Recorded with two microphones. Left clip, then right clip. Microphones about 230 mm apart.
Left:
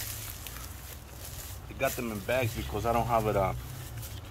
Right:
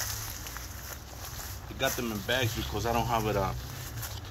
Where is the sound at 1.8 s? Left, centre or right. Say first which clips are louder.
Even; centre.